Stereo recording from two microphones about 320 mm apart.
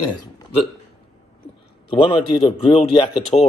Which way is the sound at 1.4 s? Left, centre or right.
Centre.